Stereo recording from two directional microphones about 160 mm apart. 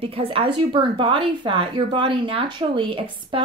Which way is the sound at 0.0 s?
35° right (ahead or behind).